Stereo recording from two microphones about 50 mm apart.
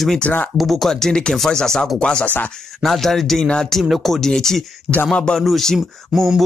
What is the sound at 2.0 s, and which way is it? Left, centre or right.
Speech, left.